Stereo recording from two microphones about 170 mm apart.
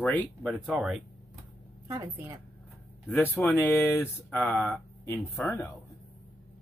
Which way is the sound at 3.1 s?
10° left (ahead or behind).